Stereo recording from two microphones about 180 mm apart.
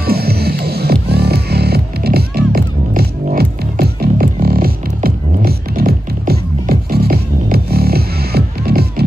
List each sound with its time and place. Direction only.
0.0 s music: 60° right (ahead or behind)
3.3 s music: 45° right (ahead or behind)
3.8 s music: 60° right (ahead or behind)